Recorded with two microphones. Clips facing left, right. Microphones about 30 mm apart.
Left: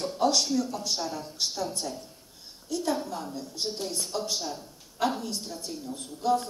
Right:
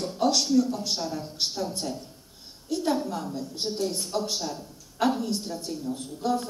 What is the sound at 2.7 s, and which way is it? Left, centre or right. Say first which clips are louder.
A man's voice: right 3 dB; right.